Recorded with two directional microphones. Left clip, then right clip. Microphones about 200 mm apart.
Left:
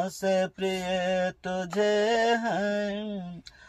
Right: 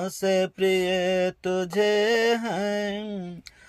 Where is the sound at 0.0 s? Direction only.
35° right (ahead or behind).